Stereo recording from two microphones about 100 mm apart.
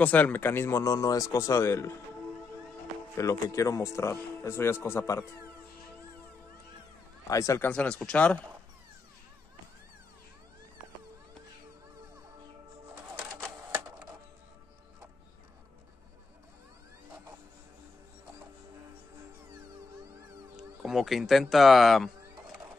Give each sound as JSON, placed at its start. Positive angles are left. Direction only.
{"t": 0.0, "sound": "speech", "side_deg": 15}
{"t": 3.2, "sound": "speech", "side_deg": 30}
{"t": 7.2, "sound": "speech", "side_deg": 35}
{"t": 7.6, "sound": "speech", "side_deg": 15}
{"t": 13.7, "sound": "music", "side_deg": -20}
{"t": 20.5, "sound": "a sound", "side_deg": -5}